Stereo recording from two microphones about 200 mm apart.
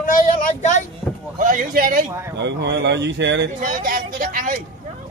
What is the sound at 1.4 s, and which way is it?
Speech, 40° right (ahead or behind).